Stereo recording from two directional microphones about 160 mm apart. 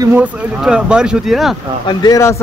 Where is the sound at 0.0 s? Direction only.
15° right (ahead or behind).